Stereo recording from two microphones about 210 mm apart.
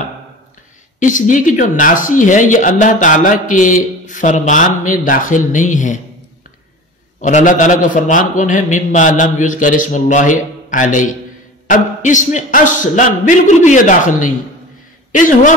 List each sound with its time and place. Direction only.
0.9 s speech: 35° left (ahead or behind)
7.2 s speech: 35° left (ahead or behind)